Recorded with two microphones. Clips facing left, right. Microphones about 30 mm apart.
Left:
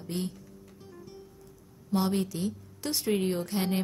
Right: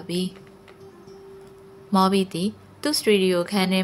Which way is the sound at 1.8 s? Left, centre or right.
Right.